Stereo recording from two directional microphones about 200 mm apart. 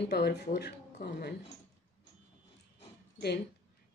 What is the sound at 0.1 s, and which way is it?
Speech, 55° left (ahead or behind).